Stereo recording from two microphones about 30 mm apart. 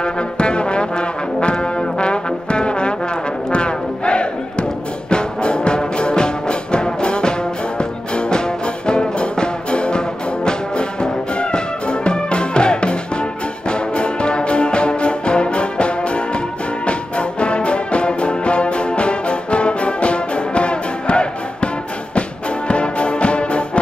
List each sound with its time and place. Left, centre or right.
0.0 s brass instrument: left
3.5 s music: left
22.7 s music: left